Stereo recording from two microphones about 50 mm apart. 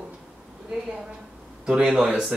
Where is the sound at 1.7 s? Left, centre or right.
Centre.